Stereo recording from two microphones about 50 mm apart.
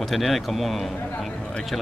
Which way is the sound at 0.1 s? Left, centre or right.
Centre.